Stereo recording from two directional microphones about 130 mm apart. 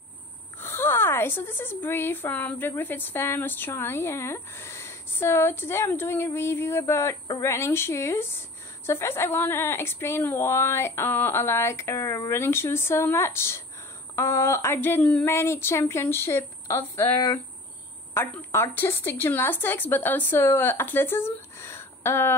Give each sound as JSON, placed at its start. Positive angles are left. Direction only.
{"t": 0.6, "sound": "a woman's voice", "side_deg": 20}
{"t": 18.1, "sound": "speech", "side_deg": 15}